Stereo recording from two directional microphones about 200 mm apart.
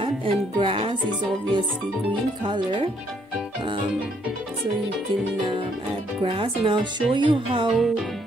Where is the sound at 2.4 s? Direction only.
25° right (ahead or behind).